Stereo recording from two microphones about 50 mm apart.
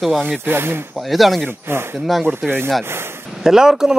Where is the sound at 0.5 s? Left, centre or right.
Right.